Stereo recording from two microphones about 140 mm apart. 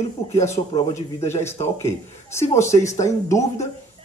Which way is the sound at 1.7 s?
20° left (ahead or behind).